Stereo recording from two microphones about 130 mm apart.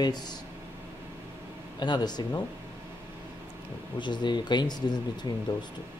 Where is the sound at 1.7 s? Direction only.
35° left (ahead or behind).